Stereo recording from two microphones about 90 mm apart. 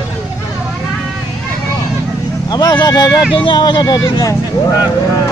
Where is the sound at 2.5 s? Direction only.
45° left (ahead or behind).